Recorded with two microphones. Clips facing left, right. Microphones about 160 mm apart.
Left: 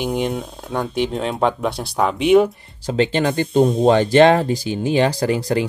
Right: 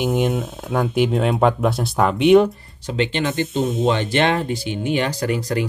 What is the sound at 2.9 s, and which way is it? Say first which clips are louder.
Speech: left 4 dB; 40° left (ahead or behind).